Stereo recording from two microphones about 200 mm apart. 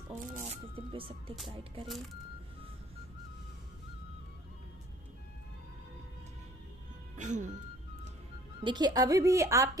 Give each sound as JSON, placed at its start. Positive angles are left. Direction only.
{"t": 0.5, "sound": "speech", "side_deg": -25}
{"t": 7.2, "sound": "speech", "side_deg": -35}
{"t": 8.5, "sound": "a woman's voice", "side_deg": -20}